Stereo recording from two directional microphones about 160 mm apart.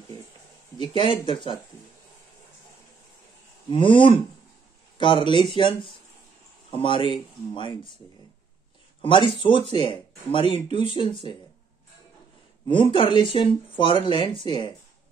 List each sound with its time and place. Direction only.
0.7 s speech: 30° left (ahead or behind)
3.7 s speech: 30° left (ahead or behind)
6.7 s speech: 30° left (ahead or behind)
9.4 s speech: 30° left (ahead or behind)
12.6 s speech: 30° left (ahead or behind)